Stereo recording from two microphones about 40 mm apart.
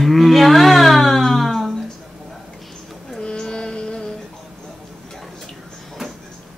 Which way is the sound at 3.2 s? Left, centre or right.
Left.